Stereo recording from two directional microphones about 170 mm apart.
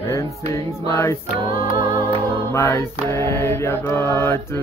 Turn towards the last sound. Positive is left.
turn(degrees=15)  # may be behind; listen again after turning